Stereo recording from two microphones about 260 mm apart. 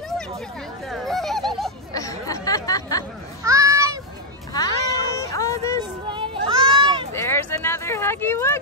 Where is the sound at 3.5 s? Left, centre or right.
Centre.